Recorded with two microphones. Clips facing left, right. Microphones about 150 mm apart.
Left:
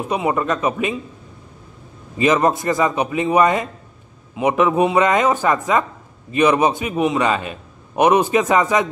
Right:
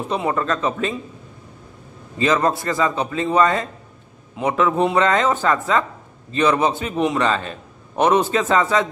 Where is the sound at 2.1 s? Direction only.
20° left (ahead or behind).